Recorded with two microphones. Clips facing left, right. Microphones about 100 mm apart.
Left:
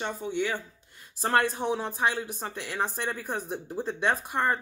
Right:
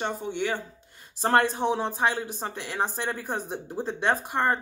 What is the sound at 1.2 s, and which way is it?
Speech, 30° right (ahead or behind).